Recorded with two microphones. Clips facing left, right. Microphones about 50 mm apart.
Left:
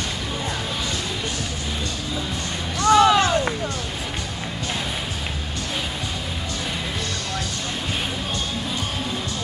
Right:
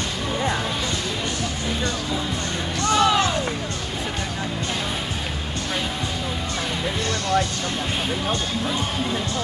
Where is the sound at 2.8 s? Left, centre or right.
Left.